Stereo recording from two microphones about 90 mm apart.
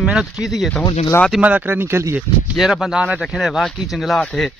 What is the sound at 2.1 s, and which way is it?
Speech, 5° right (ahead or behind).